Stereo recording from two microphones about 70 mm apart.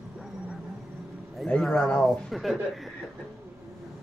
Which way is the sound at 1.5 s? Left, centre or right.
Centre.